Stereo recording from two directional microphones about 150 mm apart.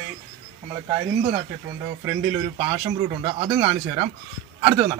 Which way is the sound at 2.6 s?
30° right (ahead or behind).